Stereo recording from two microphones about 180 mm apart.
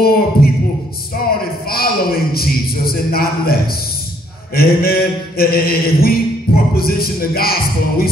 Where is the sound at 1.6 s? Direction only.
55° left (ahead or behind).